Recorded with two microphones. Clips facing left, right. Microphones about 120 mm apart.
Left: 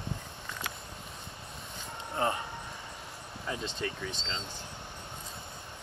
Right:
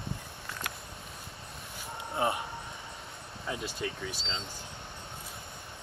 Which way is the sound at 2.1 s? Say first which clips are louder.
Even; 15° right (ahead or behind).